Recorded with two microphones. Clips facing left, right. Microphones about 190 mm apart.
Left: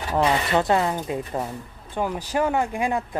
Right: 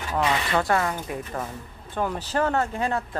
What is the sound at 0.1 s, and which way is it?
Speech, 35° left (ahead or behind).